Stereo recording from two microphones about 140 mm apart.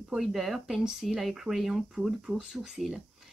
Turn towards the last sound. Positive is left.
turn(degrees=0)  # may be behind; listen again after turning